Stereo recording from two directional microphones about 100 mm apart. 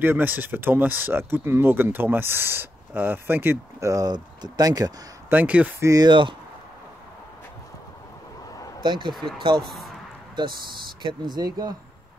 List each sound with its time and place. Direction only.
0.0 s speech: 20° right (ahead or behind)
3.9 s speech: 45° right (ahead or behind)
5.3 s speech: 15° right (ahead or behind)
5.8 s speech: 35° right (ahead or behind)
6.0 s speech: 55° right (ahead or behind)
8.8 s speech: 50° right (ahead or behind)
11.0 s speech: 50° right (ahead or behind)